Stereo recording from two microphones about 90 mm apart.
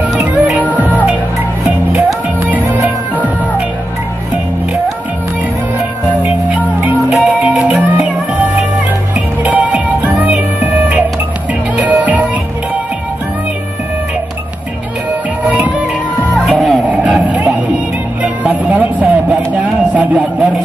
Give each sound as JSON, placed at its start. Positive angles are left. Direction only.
{"t": 0.2, "sound": "music", "side_deg": -20}
{"t": 2.4, "sound": "music", "side_deg": -20}
{"t": 6.2, "sound": "music", "side_deg": -20}
{"t": 15.4, "sound": "music", "side_deg": -15}
{"t": 16.5, "sound": "music", "side_deg": 0}
{"t": 16.9, "sound": "a sound", "side_deg": -15}
{"t": 18.2, "sound": "music", "side_deg": -15}
{"t": 19.5, "sound": "a sound", "side_deg": -15}